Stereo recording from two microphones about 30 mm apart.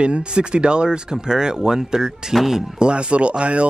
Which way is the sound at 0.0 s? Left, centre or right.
Right.